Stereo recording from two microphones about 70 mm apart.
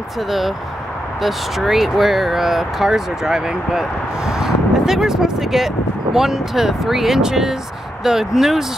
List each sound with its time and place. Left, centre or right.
1.2 s speech: centre